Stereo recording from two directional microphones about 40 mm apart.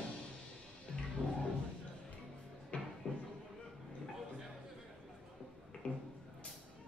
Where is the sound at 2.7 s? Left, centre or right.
Left.